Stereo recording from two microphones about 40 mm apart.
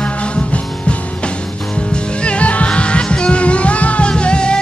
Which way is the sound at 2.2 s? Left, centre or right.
Left.